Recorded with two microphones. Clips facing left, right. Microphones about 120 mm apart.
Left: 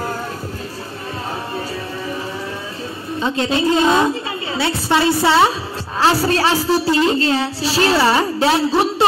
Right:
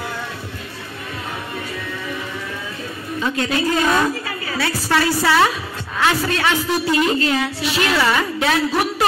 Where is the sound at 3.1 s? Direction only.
30° left (ahead or behind).